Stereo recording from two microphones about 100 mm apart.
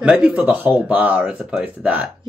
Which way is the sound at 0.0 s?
10° right (ahead or behind).